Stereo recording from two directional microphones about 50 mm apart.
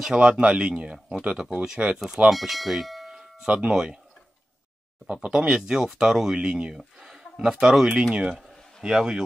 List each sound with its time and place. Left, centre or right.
0.2 s speech: right
2.2 s speech: centre
3.4 s speech: centre
5.0 s speech: right
5.5 s speech: centre
6.8 s a sound: centre
7.5 s speech: centre
8.4 s a sound: centre